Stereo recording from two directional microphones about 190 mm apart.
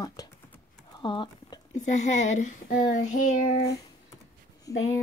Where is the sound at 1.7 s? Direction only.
40° left (ahead or behind).